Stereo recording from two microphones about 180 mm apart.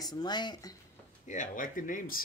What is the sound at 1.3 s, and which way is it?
Speech, 45° left (ahead or behind).